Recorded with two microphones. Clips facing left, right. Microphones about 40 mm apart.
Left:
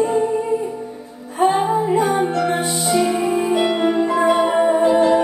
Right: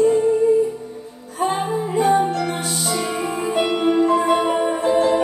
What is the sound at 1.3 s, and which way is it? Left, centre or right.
Music, left.